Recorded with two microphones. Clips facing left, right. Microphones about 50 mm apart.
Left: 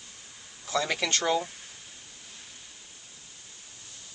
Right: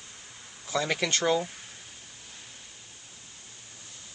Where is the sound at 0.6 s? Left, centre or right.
Centre.